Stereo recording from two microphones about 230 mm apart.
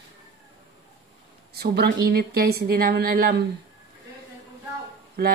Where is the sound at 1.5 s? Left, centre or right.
Right.